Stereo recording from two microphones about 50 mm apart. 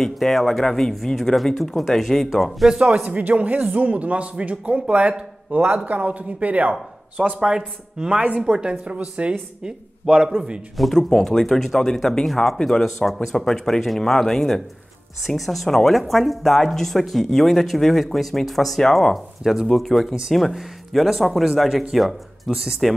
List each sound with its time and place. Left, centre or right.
0.0 s speech: centre
2.7 s speech: right
7.2 s speech: centre
10.8 s speech: centre
12.8 s speech: centre
19.4 s speech: centre
19.7 s speech: centre